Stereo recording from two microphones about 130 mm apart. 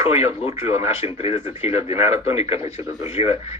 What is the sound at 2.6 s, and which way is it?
Speech, 20° right (ahead or behind).